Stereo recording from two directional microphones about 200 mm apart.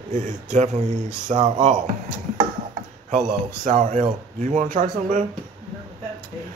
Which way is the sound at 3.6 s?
40° right (ahead or behind).